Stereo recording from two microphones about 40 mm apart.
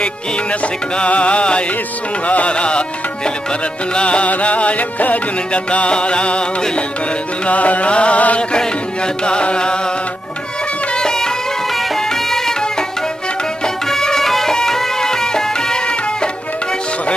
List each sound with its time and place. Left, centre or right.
0.0 s music: left
3.9 s music: left
5.7 s music: left
7.4 s music: left
8.5 s music: left
11.0 s music: centre
13.8 s music: centre